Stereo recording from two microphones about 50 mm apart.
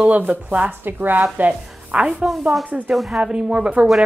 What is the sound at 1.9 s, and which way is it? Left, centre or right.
Speech, right.